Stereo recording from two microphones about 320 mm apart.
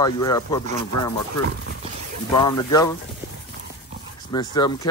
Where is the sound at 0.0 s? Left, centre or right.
Centre.